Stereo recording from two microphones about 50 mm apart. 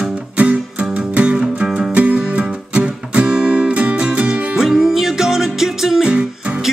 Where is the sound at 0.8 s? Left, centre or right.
Right.